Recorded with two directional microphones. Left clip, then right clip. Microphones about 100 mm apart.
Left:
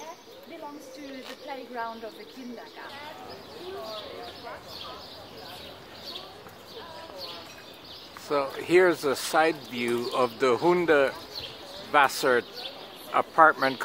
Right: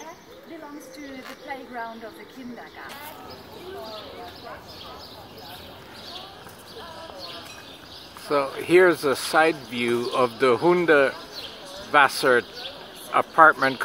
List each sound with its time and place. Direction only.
8.3 s speech: 15° right (ahead or behind)